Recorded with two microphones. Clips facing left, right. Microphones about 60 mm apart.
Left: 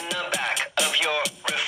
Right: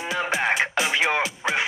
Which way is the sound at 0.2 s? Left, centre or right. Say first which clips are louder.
Right 6 dB; right.